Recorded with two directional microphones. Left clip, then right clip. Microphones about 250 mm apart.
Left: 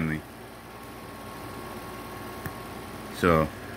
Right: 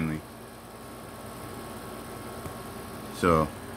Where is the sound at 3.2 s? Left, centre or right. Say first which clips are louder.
Left 1 dB; centre.